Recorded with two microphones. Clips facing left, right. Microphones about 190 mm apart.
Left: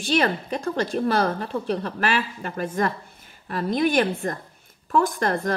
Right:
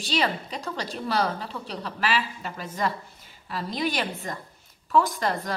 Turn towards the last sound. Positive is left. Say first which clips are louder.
# left 3 dB
turn(degrees=50)  # may be behind; listen again after turning